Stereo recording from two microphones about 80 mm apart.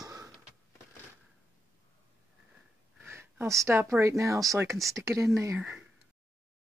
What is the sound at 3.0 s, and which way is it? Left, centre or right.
Speech, right.